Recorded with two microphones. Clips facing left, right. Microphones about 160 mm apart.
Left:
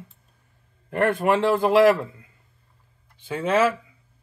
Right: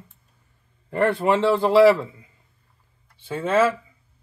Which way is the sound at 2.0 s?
Centre (ahead or behind).